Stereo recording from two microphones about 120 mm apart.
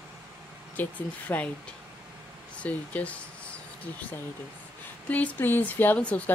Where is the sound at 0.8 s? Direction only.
15° left (ahead or behind).